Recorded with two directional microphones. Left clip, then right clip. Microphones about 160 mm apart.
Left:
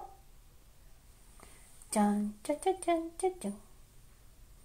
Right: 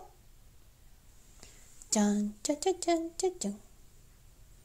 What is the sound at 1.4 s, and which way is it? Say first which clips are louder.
Speech: right 2 dB; 40° right (ahead or behind).